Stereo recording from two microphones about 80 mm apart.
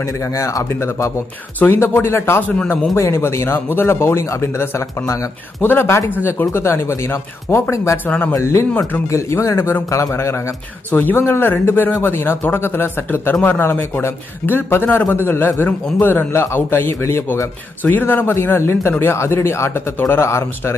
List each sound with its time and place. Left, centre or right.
0.0 s speech: left
5.6 s speech: left
8.0 s speech: left
8.3 s a man's voice: left
10.9 s speech: left